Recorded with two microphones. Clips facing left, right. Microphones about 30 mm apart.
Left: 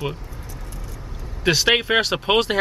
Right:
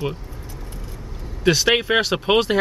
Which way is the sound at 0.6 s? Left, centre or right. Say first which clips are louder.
Right 1 dB; right.